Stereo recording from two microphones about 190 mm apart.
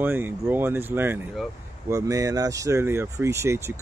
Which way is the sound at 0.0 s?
10° right (ahead or behind).